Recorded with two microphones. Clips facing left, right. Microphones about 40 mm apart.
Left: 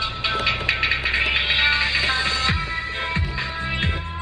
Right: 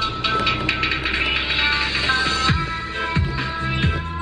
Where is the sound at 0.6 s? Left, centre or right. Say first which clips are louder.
Even; left.